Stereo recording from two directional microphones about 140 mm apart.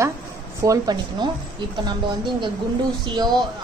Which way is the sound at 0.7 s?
30° right (ahead or behind).